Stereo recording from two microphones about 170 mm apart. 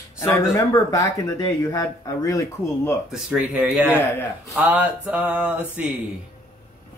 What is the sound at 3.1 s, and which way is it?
Speech, 5° right (ahead or behind).